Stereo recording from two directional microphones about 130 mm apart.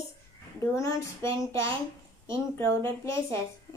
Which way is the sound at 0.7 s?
25° left (ahead or behind).